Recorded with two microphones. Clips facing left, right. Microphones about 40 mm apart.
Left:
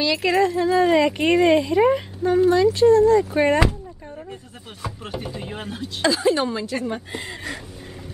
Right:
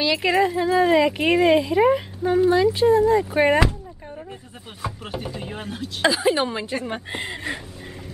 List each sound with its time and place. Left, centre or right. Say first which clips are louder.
0.0 s speech: even; centre
4.8 s chopping: right 1 dB; centre
6.0 s a woman's voice: even; centre